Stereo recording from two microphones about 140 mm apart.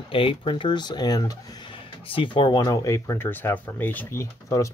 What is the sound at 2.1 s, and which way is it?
Speech, 35° left (ahead or behind).